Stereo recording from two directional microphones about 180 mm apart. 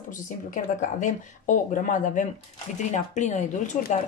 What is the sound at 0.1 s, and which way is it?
Speech, 45° left (ahead or behind).